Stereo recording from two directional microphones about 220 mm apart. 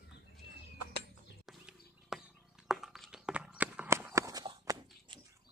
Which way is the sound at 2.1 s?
Centre (ahead or behind).